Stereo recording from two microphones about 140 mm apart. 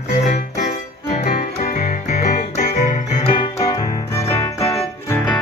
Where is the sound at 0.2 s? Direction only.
60° left (ahead or behind).